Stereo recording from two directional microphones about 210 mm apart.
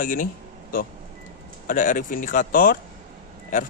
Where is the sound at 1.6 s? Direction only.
40° left (ahead or behind).